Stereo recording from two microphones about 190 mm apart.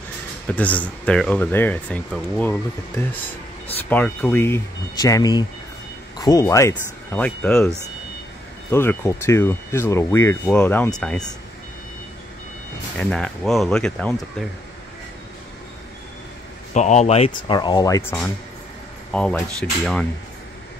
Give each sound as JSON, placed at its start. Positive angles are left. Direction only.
{"t": 0.5, "sound": "speech", "side_deg": 10}
{"t": 12.9, "sound": "speech", "side_deg": 5}
{"t": 16.7, "sound": "speech", "side_deg": 40}
{"t": 17.6, "sound": "speech", "side_deg": 20}